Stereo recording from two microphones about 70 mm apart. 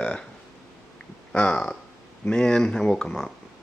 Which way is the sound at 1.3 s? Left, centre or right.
Centre.